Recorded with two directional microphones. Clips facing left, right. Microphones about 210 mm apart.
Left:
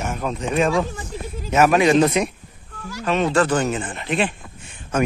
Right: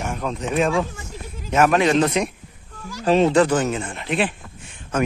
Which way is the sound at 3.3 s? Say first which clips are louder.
Right 2 dB; 15° right (ahead or behind).